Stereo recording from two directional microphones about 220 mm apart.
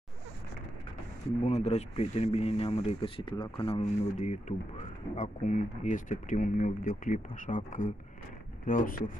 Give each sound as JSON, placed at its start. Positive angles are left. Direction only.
{"t": 1.4, "sound": "speech", "side_deg": 30}